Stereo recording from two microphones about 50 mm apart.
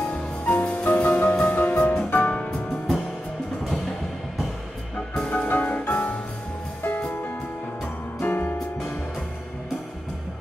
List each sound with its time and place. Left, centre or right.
0.1 s music: left
5.2 s music: left
8.2 s music: left